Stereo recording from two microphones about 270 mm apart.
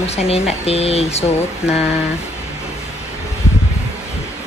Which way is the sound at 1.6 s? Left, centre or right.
Centre.